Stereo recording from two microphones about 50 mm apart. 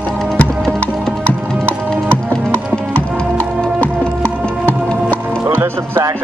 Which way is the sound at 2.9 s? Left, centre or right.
Left.